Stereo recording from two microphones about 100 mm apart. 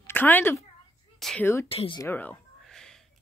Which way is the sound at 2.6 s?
5° left (ahead or behind).